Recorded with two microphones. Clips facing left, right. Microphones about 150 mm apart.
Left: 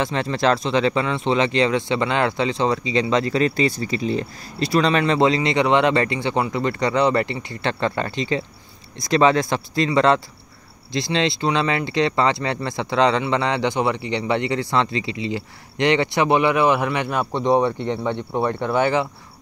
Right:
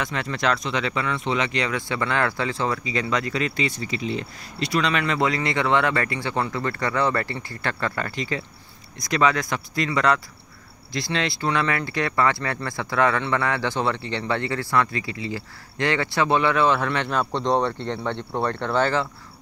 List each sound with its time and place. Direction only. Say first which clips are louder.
0.0 s speech: left 5 dB; 30° left (ahead or behind); by 19.0 s 15° left (ahead or behind)